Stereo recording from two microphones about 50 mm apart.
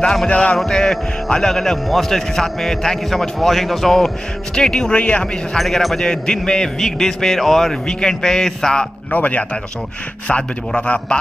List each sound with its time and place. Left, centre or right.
0.0 s a man's voice: centre
0.3 s speech: left
0.7 s a man's voice: centre
4.9 s speech: left
5.6 s a man's voice: centre
6.0 s a man's voice: centre
9.1 s speech: left